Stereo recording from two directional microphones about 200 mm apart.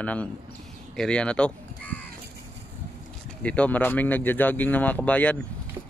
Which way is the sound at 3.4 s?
10° left (ahead or behind).